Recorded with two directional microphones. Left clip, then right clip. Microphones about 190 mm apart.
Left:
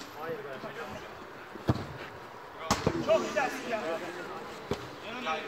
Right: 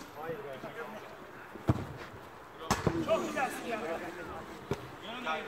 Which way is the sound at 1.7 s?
5° right (ahead or behind).